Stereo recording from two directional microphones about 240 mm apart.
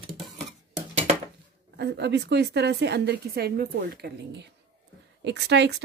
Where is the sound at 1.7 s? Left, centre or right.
Right.